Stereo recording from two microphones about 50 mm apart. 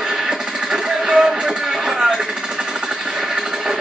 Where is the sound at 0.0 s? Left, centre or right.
Centre.